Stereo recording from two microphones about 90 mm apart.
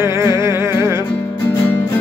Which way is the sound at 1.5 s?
25° left (ahead or behind).